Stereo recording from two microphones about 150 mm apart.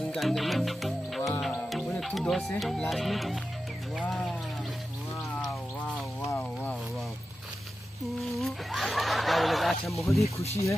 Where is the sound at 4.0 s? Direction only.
Centre (ahead or behind).